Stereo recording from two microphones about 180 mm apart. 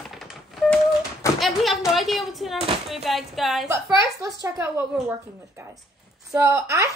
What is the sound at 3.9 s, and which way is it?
Speech, 20° right (ahead or behind).